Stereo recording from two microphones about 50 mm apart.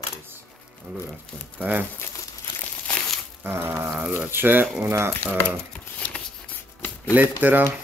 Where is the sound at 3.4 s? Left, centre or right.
Right.